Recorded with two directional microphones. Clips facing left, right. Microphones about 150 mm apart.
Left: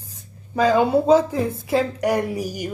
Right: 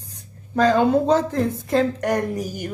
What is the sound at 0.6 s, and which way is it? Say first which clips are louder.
A woman's voice: even; 10° left (ahead or behind).